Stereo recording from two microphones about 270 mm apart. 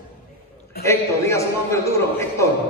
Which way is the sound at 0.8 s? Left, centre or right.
Centre.